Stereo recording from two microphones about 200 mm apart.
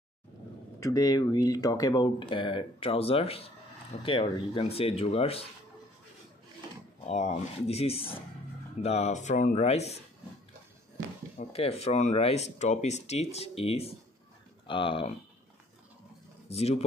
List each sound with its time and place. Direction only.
0.7 s speech: 15° left (ahead or behind)
7.1 s speech: 35° left (ahead or behind)
11.3 s speech: 30° left (ahead or behind)
16.4 s speech: 30° left (ahead or behind)